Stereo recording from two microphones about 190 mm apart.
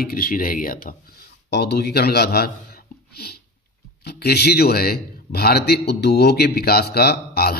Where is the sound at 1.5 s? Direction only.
60° left (ahead or behind).